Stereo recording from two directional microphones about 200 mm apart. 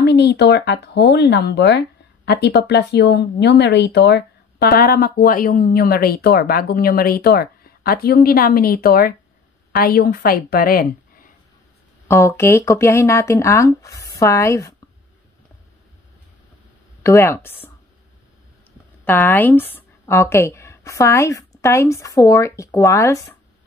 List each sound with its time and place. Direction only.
0.0 s a woman's voice: 55° left (ahead or behind)
12.1 s speech: 15° left (ahead or behind)
17.0 s speech: 15° left (ahead or behind)
19.0 s speech: 10° left (ahead or behind)